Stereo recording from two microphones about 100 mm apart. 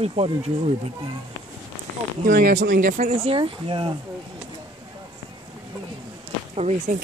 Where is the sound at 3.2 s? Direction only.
65° right (ahead or behind).